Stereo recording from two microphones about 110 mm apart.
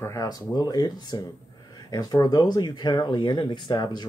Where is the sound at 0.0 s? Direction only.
30° left (ahead or behind).